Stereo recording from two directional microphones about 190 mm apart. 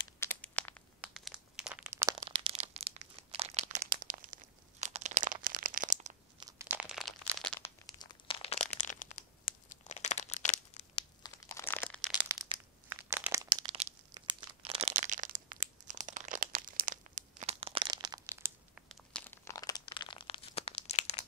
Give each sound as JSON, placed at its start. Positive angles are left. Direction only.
{"t": 0.2, "sound": "crumpling", "side_deg": 10}
{"t": 1.0, "sound": "crumpling", "side_deg": -5}
{"t": 2.0, "sound": "a sound", "side_deg": -25}
{"t": 2.7, "sound": "crumpling", "side_deg": -30}
{"t": 6.4, "sound": "crumpling", "side_deg": -10}
{"t": 8.0, "sound": "crumpling", "side_deg": 25}
{"t": 11.2, "sound": "crumpling", "side_deg": 15}
{"t": 12.9, "sound": "crumpling", "side_deg": -15}
{"t": 13.7, "sound": "crumpling", "side_deg": -25}
{"t": 18.8, "sound": "crunch", "side_deg": 5}